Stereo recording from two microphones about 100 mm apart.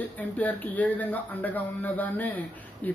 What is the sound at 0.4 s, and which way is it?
A man's voice, 15° left (ahead or behind).